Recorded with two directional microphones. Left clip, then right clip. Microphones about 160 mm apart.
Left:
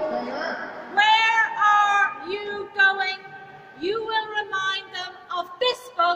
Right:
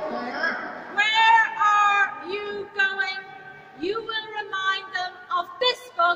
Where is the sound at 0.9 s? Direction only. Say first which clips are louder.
Even; 15° left (ahead or behind).